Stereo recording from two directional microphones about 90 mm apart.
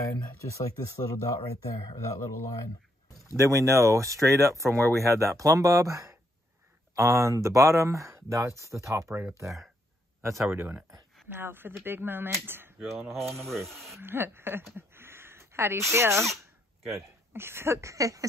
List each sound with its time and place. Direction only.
0.5 s speech: 35° left (ahead or behind)
3.3 s speech: 35° right (ahead or behind)
10.2 s speech: 30° right (ahead or behind)
13.7 s speech: centre (ahead or behind)
13.9 s speech: 25° right (ahead or behind)